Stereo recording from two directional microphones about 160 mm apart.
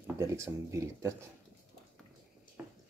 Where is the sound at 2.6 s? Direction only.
10° right (ahead or behind).